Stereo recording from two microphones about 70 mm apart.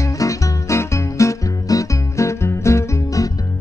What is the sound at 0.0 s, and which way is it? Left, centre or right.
Music, left.